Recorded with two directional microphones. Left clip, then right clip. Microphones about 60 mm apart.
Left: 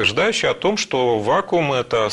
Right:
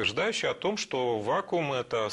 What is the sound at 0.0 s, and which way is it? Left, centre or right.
Speech, right.